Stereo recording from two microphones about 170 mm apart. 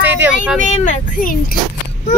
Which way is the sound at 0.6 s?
45° left (ahead or behind).